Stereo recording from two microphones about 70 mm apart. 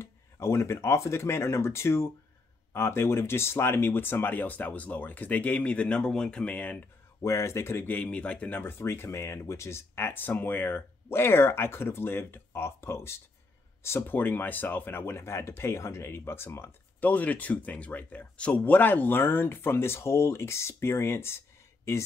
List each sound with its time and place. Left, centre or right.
0.0 s speech: left; by 6.9 s centre
7.2 s speech: left
7.9 s speech: centre; by 16.7 s left
17.0 s speech: left